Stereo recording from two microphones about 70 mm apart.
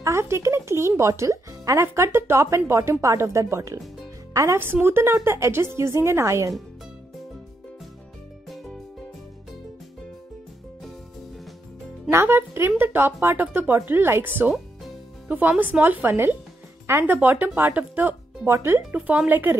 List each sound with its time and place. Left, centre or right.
0.0 s speech: right
4.8 s a woman's voice: right
12.3 s a woman's voice: right
18.4 s a woman's voice: right
18.9 s speech: right